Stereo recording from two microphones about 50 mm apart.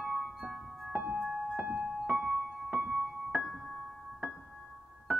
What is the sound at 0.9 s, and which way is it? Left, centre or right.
Music, right.